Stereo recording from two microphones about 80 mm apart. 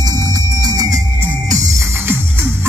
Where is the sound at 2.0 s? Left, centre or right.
Right.